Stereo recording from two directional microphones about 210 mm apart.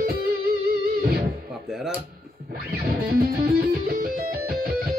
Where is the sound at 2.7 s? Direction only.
45° right (ahead or behind).